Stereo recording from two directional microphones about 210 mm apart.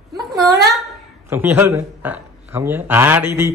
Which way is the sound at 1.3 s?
10° right (ahead or behind).